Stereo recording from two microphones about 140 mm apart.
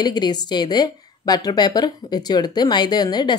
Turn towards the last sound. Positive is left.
turn(degrees=30)  # may be behind; listen again after turning